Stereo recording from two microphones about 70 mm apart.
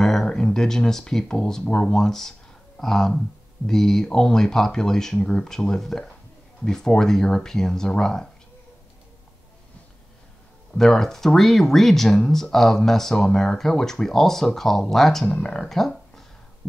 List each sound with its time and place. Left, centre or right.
0.0 s speech: centre
10.7 s speech: centre